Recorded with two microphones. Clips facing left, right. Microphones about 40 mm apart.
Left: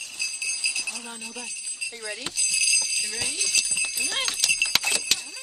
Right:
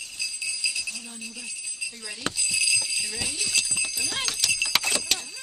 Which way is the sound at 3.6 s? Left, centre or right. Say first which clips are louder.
Left 1 dB; centre.